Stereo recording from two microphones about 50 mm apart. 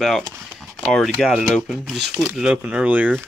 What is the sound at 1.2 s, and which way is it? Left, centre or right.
Speech, centre.